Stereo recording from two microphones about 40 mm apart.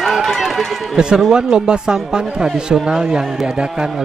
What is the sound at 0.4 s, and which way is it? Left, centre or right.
Speech, centre.